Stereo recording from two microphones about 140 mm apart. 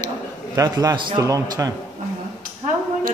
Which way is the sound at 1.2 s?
25° right (ahead or behind).